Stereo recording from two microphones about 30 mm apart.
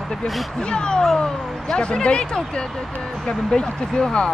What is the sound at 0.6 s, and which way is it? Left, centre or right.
Speech, left.